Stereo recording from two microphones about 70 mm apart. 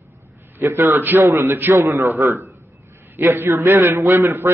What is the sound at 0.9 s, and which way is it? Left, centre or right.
Speech, right.